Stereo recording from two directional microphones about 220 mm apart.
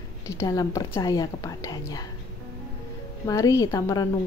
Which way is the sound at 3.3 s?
15° left (ahead or behind).